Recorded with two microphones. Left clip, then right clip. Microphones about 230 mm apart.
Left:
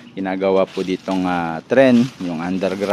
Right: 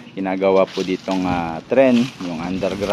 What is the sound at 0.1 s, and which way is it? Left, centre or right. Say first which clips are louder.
Speech: right 1 dB; centre.